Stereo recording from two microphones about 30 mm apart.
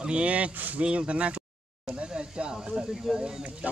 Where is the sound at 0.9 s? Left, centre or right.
Right.